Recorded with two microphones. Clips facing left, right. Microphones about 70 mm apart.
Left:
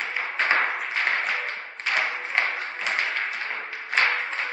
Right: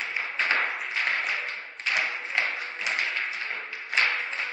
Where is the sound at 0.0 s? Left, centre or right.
Left.